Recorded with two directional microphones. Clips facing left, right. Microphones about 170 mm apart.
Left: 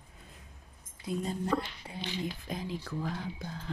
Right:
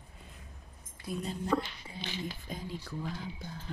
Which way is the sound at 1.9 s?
65° left (ahead or behind).